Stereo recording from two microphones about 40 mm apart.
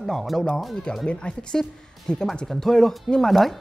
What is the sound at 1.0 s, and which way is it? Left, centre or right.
Speech, left.